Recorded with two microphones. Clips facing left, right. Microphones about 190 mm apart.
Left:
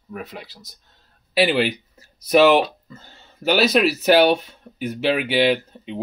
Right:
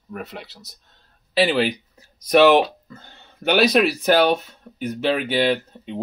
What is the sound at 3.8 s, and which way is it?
Speech, 5° left (ahead or behind).